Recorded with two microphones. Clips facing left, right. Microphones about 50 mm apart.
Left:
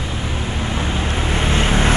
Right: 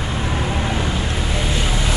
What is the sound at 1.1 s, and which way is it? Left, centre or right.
Vehicle, left.